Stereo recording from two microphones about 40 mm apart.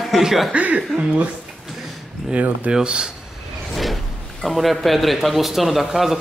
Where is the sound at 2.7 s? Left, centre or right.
Right.